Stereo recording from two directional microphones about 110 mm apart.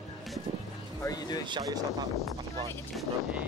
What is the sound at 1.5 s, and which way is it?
Speech, 40° right (ahead or behind).